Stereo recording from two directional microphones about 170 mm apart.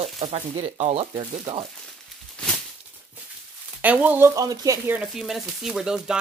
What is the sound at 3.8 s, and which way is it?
Speech, 10° right (ahead or behind).